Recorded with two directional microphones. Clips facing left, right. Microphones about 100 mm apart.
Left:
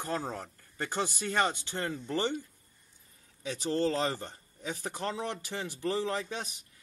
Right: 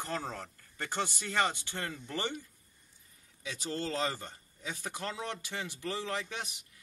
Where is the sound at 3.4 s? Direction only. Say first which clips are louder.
Left 5 dB; 40° left (ahead or behind).